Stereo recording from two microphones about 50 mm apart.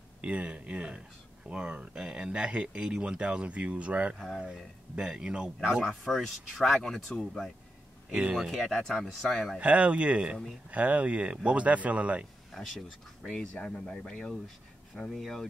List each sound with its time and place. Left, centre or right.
0.2 s speech: right
5.9 s speech: centre
8.1 s speech: right
8.6 s speech: centre
9.6 s speech: right
12.5 s speech: centre
13.3 s speech: centre
15.0 s speech: centre